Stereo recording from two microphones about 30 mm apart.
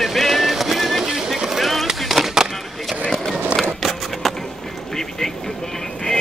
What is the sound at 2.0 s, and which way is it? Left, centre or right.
Music, centre.